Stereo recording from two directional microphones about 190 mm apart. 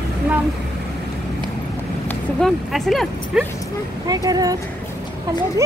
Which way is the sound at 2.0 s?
Centre (ahead or behind).